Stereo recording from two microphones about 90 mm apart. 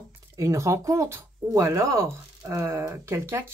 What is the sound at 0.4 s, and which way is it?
Speech, 35° right (ahead or behind).